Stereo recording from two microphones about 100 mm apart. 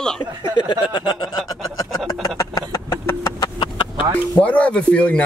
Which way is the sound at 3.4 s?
55° left (ahead or behind).